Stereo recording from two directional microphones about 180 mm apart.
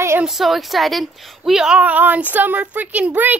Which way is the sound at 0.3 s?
Centre (ahead or behind).